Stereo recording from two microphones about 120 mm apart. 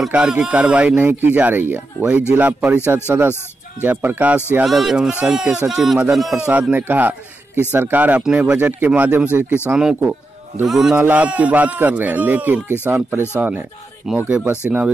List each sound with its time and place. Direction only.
0.0 s speech: 10° right (ahead or behind)
4.6 s speech: centre (ahead or behind)
11.0 s speech: 15° right (ahead or behind)